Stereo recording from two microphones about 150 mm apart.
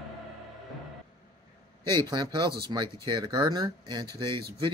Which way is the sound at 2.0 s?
30° right (ahead or behind).